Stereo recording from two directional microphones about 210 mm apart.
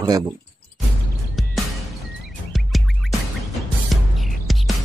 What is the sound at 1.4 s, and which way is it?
Music, centre (ahead or behind).